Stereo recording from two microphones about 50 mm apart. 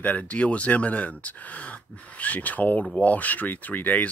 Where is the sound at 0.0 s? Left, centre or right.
Left.